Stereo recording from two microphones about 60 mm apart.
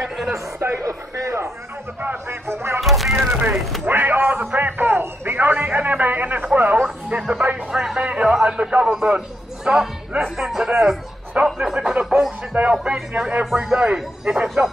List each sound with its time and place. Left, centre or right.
0.0 s a sound: centre
0.6 s speech: right
2.0 s speech: right
2.4 s speech: right
2.8 s music: centre
3.2 s speech: right
3.8 s a sound: right; by 7.4 s centre
7.7 s a man's voice: centre
11.4 s music: centre
12.8 s a man's voice: centre